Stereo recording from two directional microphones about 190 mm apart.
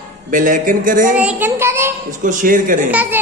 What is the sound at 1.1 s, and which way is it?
Speech, 10° right (ahead or behind).